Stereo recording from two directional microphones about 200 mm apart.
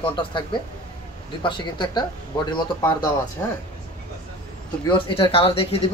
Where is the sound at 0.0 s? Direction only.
25° left (ahead or behind).